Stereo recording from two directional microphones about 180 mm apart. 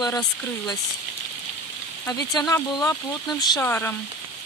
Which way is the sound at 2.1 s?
20° left (ahead or behind).